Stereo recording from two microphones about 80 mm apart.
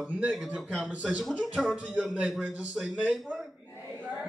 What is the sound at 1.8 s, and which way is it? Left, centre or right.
A man's voice, centre.